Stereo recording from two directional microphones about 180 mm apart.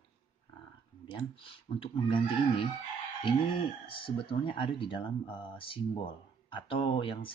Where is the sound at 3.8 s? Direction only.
30° left (ahead or behind).